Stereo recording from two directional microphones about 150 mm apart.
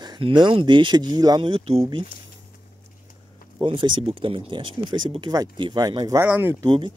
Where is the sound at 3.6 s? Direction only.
35° right (ahead or behind).